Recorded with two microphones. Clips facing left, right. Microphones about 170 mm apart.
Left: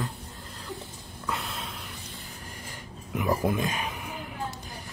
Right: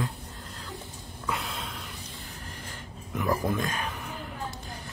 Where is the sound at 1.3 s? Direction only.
Centre (ahead or behind).